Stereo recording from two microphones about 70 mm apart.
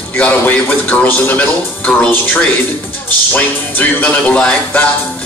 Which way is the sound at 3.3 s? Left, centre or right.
Left.